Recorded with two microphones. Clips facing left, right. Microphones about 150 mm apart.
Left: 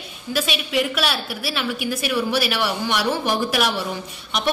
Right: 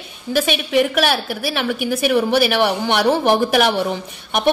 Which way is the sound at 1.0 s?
55° right (ahead or behind).